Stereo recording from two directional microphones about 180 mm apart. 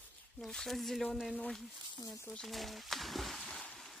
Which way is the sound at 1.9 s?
20° left (ahead or behind).